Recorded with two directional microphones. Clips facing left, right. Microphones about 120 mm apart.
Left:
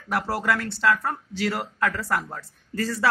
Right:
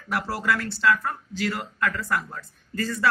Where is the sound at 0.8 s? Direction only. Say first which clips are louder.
Even; 30° left (ahead or behind).